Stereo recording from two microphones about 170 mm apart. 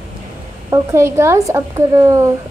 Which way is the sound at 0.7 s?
15° right (ahead or behind).